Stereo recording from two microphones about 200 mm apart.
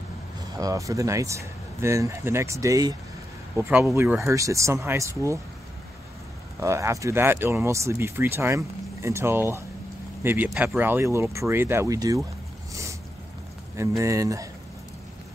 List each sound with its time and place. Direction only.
0.6 s speech: 15° right (ahead or behind)
6.6 s speech: 15° right (ahead or behind)
13.7 s speech: 15° right (ahead or behind)